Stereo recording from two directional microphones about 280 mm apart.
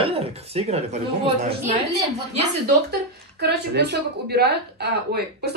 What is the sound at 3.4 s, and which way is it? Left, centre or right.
A woman's voice, right.